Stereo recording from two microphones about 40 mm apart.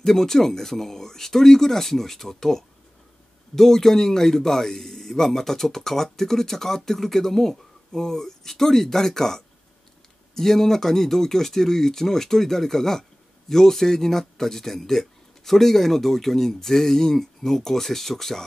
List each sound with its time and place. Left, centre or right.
0.0 s a man's voice: centre